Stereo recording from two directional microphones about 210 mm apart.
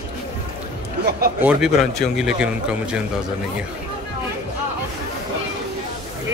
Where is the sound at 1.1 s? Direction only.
45° right (ahead or behind).